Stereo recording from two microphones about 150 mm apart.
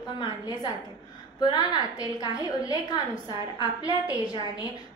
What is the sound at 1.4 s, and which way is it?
A woman's voice, 30° left (ahead or behind).